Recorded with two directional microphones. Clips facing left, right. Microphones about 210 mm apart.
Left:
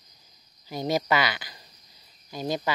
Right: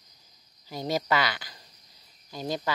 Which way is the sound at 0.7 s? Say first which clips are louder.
Left 2 dB; 15° left (ahead or behind).